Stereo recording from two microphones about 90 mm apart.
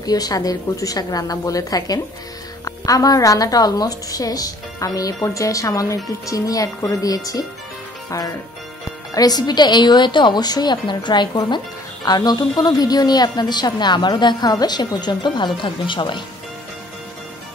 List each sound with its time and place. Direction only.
0.0 s a woman's voice: 45° left (ahead or behind)
9.1 s a woman's voice: 45° left (ahead or behind); by 16.2 s 65° left (ahead or behind)